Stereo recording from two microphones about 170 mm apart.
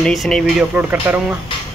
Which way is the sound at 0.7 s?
10° right (ahead or behind).